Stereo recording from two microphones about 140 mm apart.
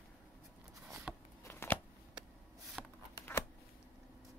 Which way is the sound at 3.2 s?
20° left (ahead or behind).